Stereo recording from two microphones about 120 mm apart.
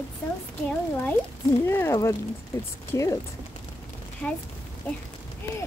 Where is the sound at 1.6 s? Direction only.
20° left (ahead or behind).